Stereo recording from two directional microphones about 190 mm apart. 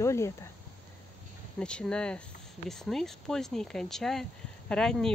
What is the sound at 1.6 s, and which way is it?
Speech, 5° left (ahead or behind).